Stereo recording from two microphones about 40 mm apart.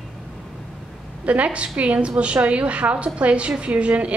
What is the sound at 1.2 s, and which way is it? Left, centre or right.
A woman's voice, right.